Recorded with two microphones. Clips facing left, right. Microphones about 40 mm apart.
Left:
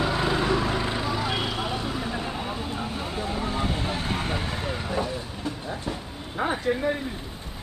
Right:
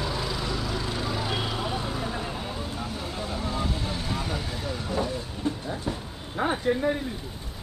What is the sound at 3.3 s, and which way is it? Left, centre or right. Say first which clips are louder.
Vehicle: left 2 dB; left.